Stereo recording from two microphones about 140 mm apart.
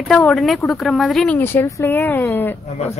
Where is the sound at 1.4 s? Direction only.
15° left (ahead or behind).